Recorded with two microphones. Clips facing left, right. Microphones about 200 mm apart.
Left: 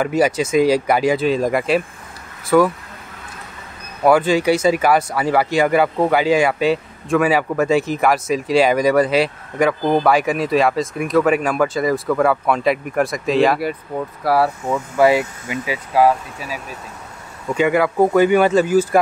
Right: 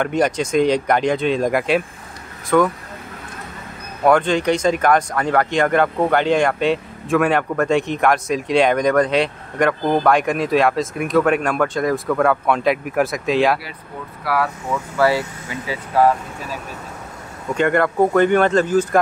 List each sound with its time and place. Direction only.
0.0 s speech: 5° left (ahead or behind)
4.0 s speech: 5° left (ahead or behind)
14.2 s speech: 35° left (ahead or behind)
15.0 s speech: 15° left (ahead or behind)
17.6 s speech: 5° left (ahead or behind)